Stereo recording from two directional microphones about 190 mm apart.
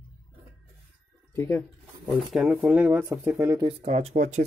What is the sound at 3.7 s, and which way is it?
Speech, 30° right (ahead or behind).